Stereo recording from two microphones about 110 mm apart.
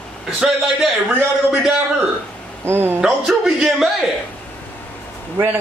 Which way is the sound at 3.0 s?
5° right (ahead or behind).